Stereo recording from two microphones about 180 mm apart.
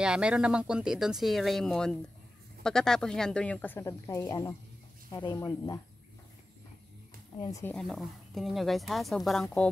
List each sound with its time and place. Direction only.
0.0 s speech: 5° right (ahead or behind); by 5.8 s 20° left (ahead or behind)
7.5 s speech: 10° left (ahead or behind)
7.8 s speech: centre (ahead or behind)